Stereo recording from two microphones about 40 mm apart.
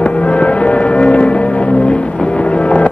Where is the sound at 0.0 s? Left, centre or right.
Left.